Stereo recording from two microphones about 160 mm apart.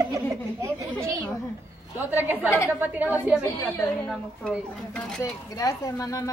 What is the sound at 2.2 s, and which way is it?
Speech, 10° right (ahead or behind).